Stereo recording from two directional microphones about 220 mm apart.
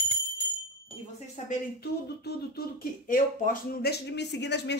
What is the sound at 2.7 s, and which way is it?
Speech, 40° left (ahead or behind).